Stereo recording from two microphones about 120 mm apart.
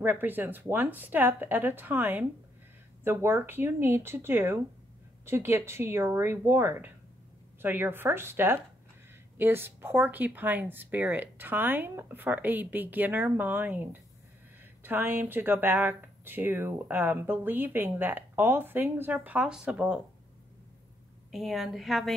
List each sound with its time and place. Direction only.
0.0 s speech: 15° right (ahead or behind)
21.3 s a woman's voice: centre (ahead or behind)